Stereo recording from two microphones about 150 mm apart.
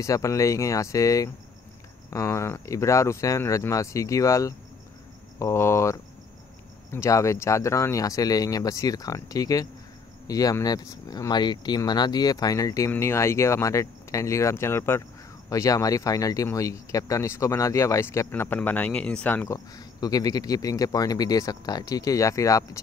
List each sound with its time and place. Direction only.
0.0 s speech: 20° left (ahead or behind)